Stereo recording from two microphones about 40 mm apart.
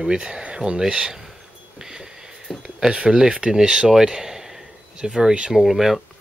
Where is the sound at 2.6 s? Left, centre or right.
Right; by 6.0 s centre.